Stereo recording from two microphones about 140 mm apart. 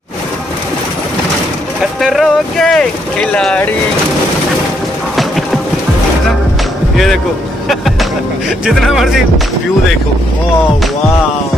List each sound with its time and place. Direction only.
1.8 s speech: centre (ahead or behind)
7.6 s speech: centre (ahead or behind)